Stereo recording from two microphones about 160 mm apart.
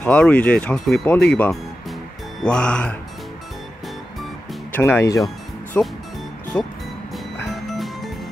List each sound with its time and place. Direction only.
0.0 s speech: 10° left (ahead or behind)
4.7 s speech: 15° left (ahead or behind)
7.5 s music: centre (ahead or behind)